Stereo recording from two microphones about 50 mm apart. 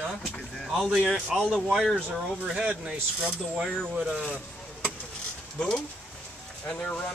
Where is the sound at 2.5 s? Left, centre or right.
Centre.